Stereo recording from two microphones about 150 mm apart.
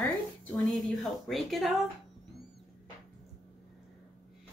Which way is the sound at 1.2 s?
Centre (ahead or behind).